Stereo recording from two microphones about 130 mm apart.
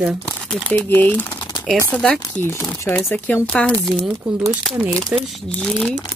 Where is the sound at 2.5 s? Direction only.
20° left (ahead or behind).